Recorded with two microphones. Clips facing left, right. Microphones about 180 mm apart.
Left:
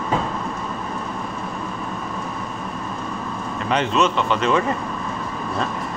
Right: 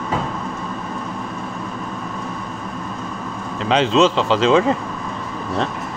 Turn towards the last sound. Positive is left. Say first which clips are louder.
# right 5 dB
turn(degrees=-90)